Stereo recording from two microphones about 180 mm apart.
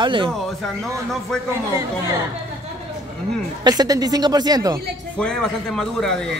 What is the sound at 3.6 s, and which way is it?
A man's voice, 20° right (ahead or behind).